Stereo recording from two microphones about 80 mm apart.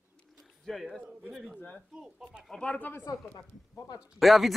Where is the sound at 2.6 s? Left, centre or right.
Centre.